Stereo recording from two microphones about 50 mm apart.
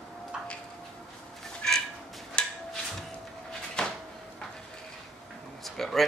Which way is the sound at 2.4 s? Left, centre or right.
Centre.